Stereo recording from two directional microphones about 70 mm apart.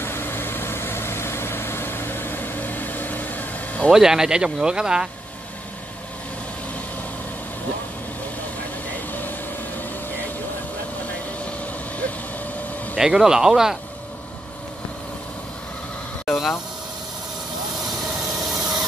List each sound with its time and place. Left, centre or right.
0.0 s vehicle: left
3.9 s speech: centre
12.9 s speech: centre
16.3 s a sound: centre
18.4 s rub: centre